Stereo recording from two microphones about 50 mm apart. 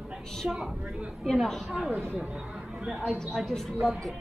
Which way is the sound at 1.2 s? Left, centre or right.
Centre.